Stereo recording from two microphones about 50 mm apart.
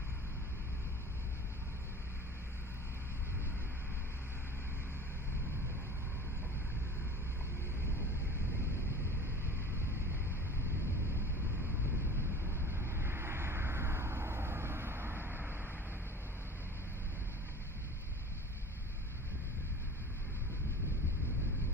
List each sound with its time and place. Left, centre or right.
12.4 s vehicle: right